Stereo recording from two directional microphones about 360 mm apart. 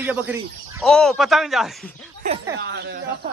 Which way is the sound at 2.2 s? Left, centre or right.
Centre.